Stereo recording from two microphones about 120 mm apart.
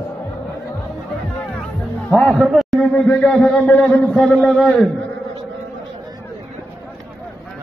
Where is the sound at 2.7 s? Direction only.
10° left (ahead or behind).